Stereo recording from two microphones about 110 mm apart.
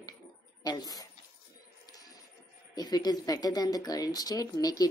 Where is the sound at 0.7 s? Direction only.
35° left (ahead or behind).